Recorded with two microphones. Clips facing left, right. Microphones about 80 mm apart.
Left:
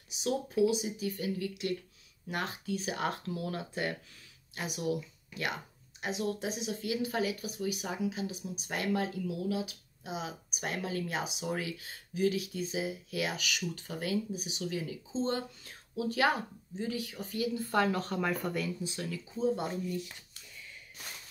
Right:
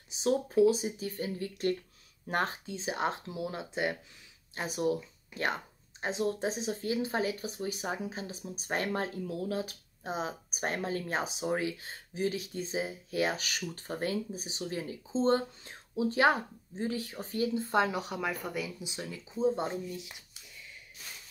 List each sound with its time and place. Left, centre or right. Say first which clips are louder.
0.1 s speech: right 4 dB; right
2.6 s speech: right 1 dB; right
4.6 s speech: right 3 dB; right; by 20.4 s centre